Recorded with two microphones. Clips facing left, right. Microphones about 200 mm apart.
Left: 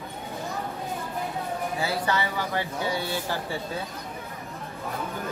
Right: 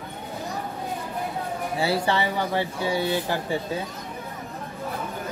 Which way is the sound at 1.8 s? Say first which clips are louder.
Right 5 dB; 25° right (ahead or behind).